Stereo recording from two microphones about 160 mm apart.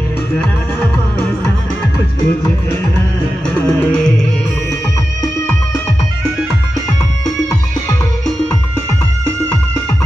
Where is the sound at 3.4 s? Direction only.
5° left (ahead or behind).